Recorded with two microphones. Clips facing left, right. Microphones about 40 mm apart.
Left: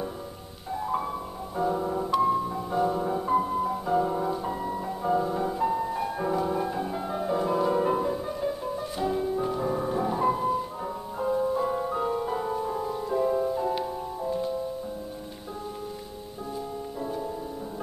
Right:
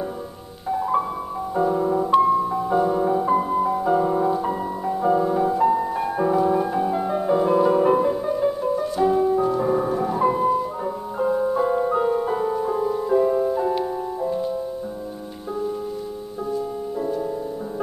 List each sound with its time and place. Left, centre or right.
0.7 s music: centre